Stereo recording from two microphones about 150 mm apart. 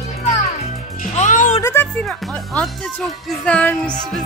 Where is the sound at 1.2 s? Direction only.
55° left (ahead or behind).